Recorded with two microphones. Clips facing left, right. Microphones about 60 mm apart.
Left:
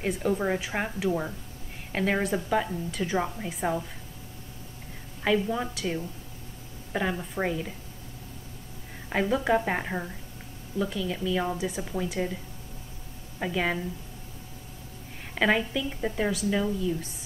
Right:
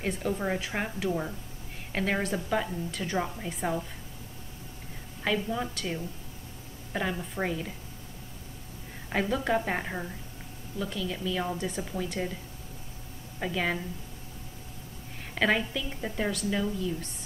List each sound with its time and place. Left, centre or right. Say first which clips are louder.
0.0 s a woman's voice: left 3 dB; centre
5.2 s a woman's voice: left 4 dB; centre
9.1 s a woman's voice: left 3 dB; centre
13.4 s a woman's voice: left 2 dB; centre
15.3 s a woman's voice: left 2 dB; centre